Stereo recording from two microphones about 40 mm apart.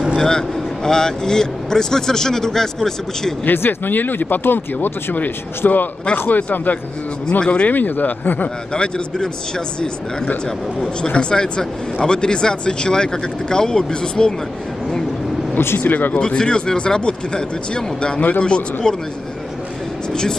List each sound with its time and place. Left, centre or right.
0.2 s speech: centre
3.5 s speech: left
7.2 s speech: left
7.7 s speech: left
8.7 s speech: left
15.8 s speech: left
16.2 s speech: left
20.1 s speech: centre